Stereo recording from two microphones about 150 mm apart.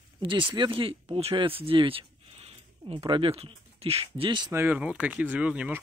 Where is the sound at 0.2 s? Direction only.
35° right (ahead or behind).